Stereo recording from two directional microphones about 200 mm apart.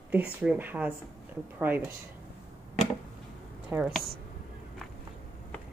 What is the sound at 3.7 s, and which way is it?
Speech, centre (ahead or behind).